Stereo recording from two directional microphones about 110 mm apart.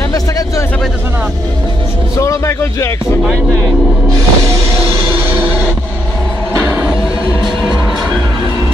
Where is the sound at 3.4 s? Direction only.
25° right (ahead or behind).